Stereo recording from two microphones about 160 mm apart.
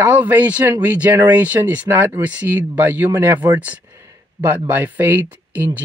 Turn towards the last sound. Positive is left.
turn(degrees=-10)  # may be behind; listen again after turning